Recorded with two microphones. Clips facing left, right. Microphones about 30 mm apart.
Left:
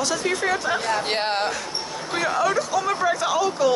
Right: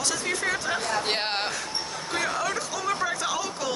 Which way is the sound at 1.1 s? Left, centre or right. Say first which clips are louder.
Left 4 dB; centre.